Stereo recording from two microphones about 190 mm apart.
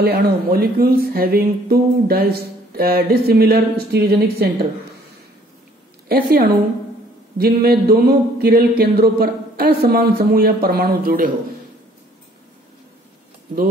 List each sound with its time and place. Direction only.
0.0 s speech: 55° right (ahead or behind)
6.0 s speech: 50° right (ahead or behind)
7.3 s a sound: 55° right (ahead or behind)